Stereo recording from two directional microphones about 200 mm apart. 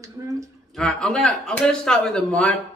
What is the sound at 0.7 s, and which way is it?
A man's voice, centre (ahead or behind).